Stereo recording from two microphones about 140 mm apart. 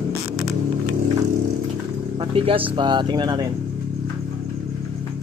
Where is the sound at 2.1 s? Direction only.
40° right (ahead or behind).